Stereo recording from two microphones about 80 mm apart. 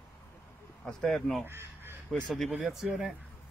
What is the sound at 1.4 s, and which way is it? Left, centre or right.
Crow, right.